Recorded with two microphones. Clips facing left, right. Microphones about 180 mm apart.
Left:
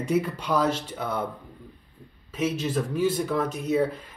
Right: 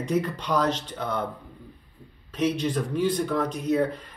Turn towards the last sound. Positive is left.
turn(degrees=5)  # may be behind; listen again after turning